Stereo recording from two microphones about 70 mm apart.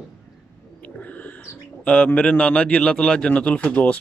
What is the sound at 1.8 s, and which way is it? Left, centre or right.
A man's voice, centre.